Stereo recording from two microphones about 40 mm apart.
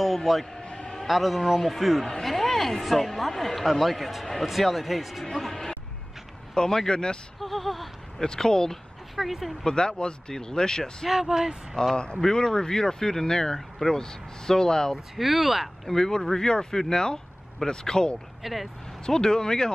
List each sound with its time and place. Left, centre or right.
0.0 s a sound: centre
0.6 s a sound: left
1.0 s speech: centre
5.2 s speech: centre
7.3 s speech: centre
8.2 s speech: centre
9.1 s speech: centre
9.7 s speech: left
11.1 s speech: centre
11.7 s speech: centre
15.1 s speech: centre
15.9 s speech: centre
18.4 s speech: centre
19.0 s speech: centre